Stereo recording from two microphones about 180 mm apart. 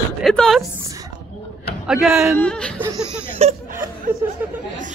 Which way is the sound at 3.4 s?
40° right (ahead or behind).